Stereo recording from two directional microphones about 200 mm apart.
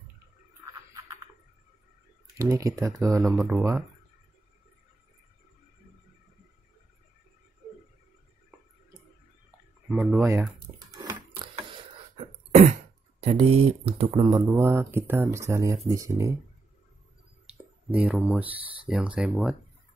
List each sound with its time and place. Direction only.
0.9 s a sound: 15° right (ahead or behind)
2.3 s speech: 15° right (ahead or behind)
3.3 s speech: centre (ahead or behind)
9.8 s speech: centre (ahead or behind)
10.2 s a sound: 15° right (ahead or behind)
12.2 s throat clearing: 35° right (ahead or behind)
13.2 s speech: 30° right (ahead or behind)
14.6 s speech: 10° right (ahead or behind)
17.5 s a sound: 5° right (ahead or behind)
18.9 s speech: 5° right (ahead or behind)